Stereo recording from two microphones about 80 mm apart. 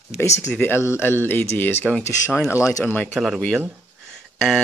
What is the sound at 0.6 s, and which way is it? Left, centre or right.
Speech, left.